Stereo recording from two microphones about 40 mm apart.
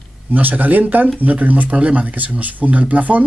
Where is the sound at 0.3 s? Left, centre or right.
Right.